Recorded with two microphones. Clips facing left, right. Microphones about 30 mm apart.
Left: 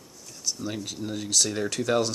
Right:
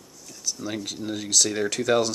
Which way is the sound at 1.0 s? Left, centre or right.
Centre.